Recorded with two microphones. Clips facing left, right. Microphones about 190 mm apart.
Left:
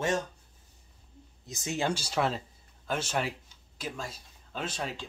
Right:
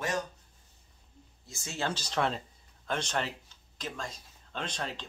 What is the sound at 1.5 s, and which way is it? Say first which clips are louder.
Speech: left 4 dB; 20° left (ahead or behind).